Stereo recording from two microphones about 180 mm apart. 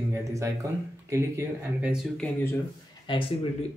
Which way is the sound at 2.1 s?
5° left (ahead or behind).